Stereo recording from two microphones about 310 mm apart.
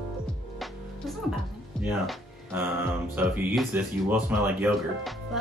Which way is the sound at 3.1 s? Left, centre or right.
Centre.